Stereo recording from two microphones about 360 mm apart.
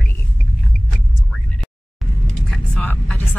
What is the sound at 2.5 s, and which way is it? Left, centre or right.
Vehicle, centre.